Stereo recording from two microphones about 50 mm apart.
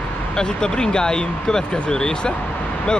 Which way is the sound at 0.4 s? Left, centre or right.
Centre.